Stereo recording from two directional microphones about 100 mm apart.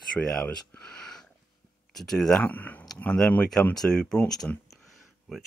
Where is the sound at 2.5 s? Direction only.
15° left (ahead or behind).